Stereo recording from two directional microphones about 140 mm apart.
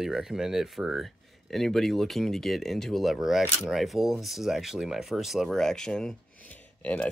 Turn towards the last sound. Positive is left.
turn(degrees=10)  # may be behind; listen again after turning